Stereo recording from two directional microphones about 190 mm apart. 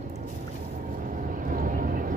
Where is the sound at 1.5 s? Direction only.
45° right (ahead or behind).